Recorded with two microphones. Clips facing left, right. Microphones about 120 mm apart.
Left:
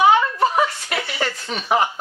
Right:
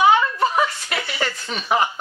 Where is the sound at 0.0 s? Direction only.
50° left (ahead or behind).